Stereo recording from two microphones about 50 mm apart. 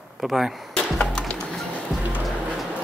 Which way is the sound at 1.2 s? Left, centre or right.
Centre.